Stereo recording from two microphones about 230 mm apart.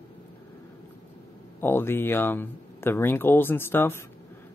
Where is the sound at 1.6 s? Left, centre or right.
Centre.